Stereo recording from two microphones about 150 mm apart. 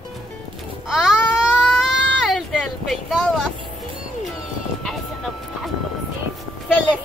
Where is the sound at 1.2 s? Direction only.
Centre (ahead or behind).